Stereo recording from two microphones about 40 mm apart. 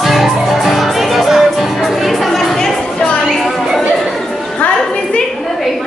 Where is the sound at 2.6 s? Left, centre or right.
Left.